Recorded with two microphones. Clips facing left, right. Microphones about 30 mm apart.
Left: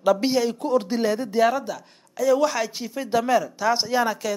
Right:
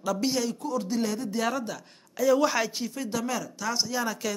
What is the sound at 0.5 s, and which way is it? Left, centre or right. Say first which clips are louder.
Speech: left 6 dB; left.